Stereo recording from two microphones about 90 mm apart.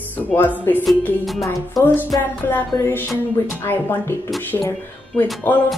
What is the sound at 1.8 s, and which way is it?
Speech, centre (ahead or behind).